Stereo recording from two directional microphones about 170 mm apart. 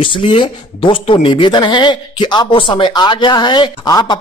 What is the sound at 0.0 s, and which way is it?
Speech, 30° left (ahead or behind).